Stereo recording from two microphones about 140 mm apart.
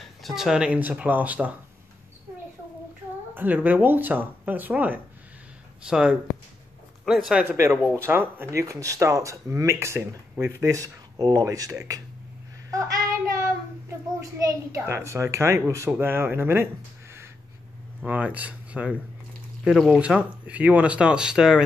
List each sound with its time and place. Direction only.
0.2 s speech: centre (ahead or behind)
3.3 s speech: 10° right (ahead or behind)
7.4 s speech: 20° right (ahead or behind)
18.0 s speech: 10° right (ahead or behind)